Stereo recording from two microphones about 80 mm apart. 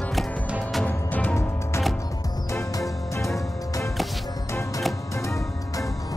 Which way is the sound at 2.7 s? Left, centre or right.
Left.